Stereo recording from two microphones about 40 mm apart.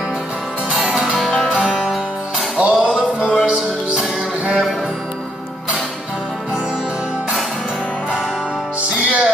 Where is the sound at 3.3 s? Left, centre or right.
Centre.